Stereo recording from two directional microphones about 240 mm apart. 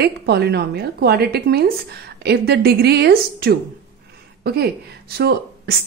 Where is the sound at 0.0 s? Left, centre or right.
Right.